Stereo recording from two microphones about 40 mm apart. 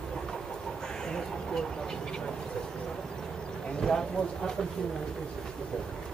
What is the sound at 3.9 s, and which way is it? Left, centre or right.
Speech, centre.